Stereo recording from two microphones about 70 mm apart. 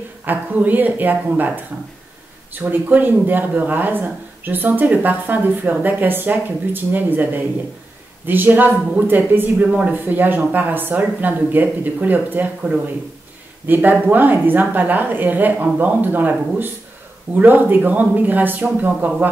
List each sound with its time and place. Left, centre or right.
0.2 s speech: right
2.5 s speech: right